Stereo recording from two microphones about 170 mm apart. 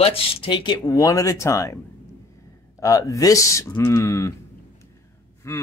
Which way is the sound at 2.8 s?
20° left (ahead or behind).